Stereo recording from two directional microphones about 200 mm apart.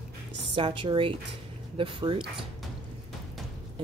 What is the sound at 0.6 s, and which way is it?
Speech, 25° right (ahead or behind).